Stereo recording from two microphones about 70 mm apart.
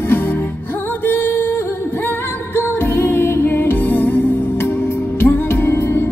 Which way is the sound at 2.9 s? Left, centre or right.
Left.